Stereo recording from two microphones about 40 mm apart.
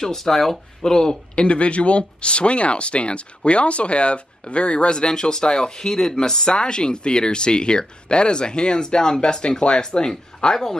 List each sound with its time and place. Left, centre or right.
0.0 s speech: centre
1.3 s speech: left